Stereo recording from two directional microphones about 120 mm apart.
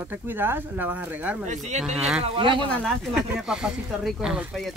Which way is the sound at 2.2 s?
45° right (ahead or behind).